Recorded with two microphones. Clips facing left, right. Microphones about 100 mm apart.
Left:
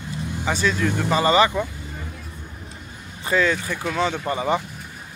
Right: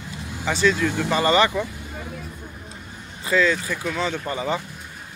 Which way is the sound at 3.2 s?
20° left (ahead or behind).